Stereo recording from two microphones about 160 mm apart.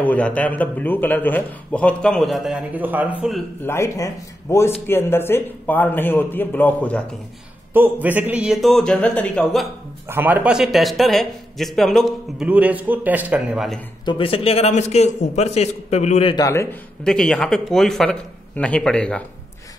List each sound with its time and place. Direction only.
0.0 s a man's voice: 10° left (ahead or behind)
2.7 s a man's voice: 10° right (ahead or behind)
3.6 s a man's voice: 15° left (ahead or behind)
7.7 s a man's voice: 10° right (ahead or behind)
10.0 s a man's voice: 10° right (ahead or behind)
14.0 s a man's voice: 35° left (ahead or behind)
16.3 s a man's voice: 20° left (ahead or behind)
17.0 s a man's voice: 5° left (ahead or behind)